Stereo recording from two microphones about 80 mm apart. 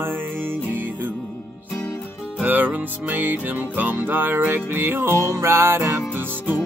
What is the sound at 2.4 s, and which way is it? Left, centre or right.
Music, right.